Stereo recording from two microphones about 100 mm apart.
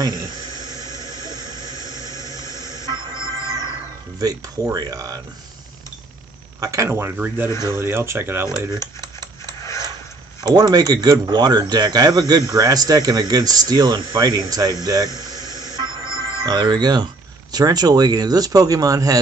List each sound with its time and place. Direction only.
0.0 s snake: 45° right (ahead or behind)
1.0 s squeal: 40° right (ahead or behind)
1.8 s squeal: 35° left (ahead or behind)
2.4 s vehicle: 30° left (ahead or behind)
2.7 s vehicle: 40° right (ahead or behind)
3.4 s music: 45° right (ahead or behind)
4.2 s speech: 35° right (ahead or behind)
6.6 s speech: 35° right (ahead or behind)
8.7 s a sound: 45° right (ahead or behind)
9.6 s a sound: 30° left (ahead or behind)
10.4 s speech: 40° right (ahead or behind)
15.4 s a sound: 35° left (ahead or behind)
15.7 s speech: 45° right (ahead or behind)